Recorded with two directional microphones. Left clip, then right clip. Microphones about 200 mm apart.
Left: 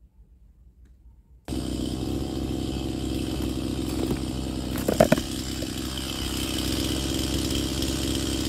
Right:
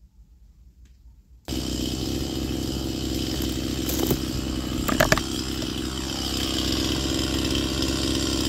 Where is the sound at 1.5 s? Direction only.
20° left (ahead or behind).